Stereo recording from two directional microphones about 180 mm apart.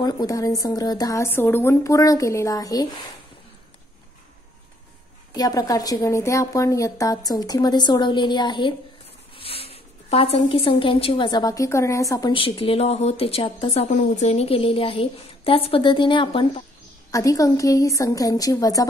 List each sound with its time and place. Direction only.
0.0 s a woman's voice: 20° left (ahead or behind)
5.3 s a woman's voice: 20° left (ahead or behind)
12.3 s a woman's voice: 30° left (ahead or behind)